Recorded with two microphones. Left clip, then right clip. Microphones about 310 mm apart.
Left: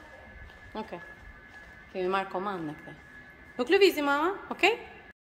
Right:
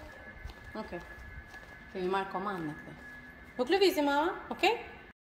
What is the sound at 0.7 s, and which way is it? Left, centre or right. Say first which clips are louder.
Speech: left 4 dB; centre.